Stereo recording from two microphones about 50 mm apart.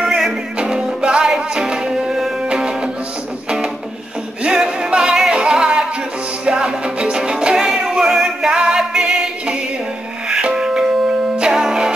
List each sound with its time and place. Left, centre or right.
0.0 s music: centre